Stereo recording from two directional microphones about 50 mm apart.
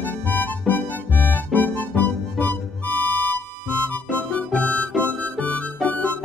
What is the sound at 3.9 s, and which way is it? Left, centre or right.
Music, left.